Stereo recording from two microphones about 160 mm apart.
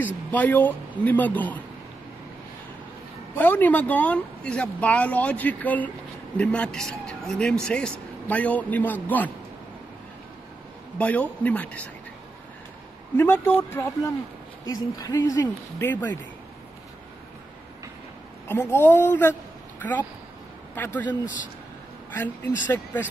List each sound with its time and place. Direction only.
0.0 s a man's voice: 10° left (ahead or behind)
3.3 s a man's voice: 10° left (ahead or behind)
11.0 s a man's voice: 10° left (ahead or behind)
13.1 s a man's voice: 15° left (ahead or behind)
18.5 s a man's voice: 15° left (ahead or behind)
20.7 s a man's voice: 10° left (ahead or behind)
22.1 s a man's voice: 10° left (ahead or behind)